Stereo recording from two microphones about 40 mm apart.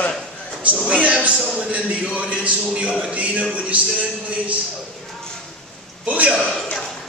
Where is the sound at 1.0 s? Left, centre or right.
Right.